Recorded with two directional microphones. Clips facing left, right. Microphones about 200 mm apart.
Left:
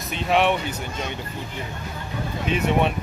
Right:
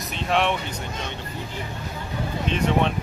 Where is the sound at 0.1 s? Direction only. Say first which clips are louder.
Left 3 dB; centre (ahead or behind).